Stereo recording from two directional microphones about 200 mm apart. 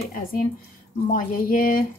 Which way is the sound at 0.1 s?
45° left (ahead or behind).